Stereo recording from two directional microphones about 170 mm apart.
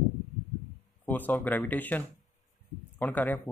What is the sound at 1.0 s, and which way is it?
Speech, 10° left (ahead or behind).